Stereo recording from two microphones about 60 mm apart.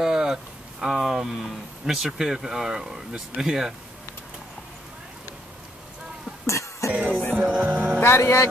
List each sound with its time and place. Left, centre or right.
0.0 s speech: centre
6.4 s cough: left
6.9 s music: right
8.0 s speech: left